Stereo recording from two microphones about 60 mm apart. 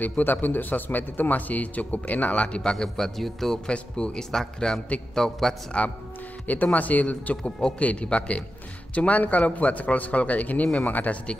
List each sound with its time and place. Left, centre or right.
0.0 s a man's voice: left; by 3.5 s centre
3.6 s a man's voice: centre
6.4 s a man's voice: left